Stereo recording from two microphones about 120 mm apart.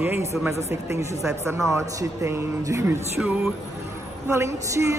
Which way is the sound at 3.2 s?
10° right (ahead or behind).